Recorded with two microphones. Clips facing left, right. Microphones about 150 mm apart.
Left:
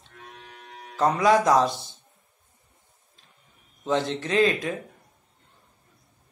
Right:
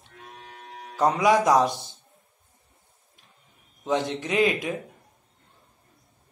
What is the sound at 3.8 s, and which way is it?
Speech, 15° right (ahead or behind).